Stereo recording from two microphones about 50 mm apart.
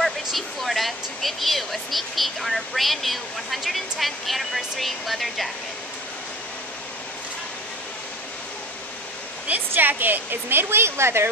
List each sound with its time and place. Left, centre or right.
0.0 s speech: centre
9.5 s a woman's voice: right